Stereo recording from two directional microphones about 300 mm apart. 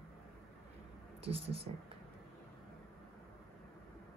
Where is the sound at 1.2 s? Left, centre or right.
Centre.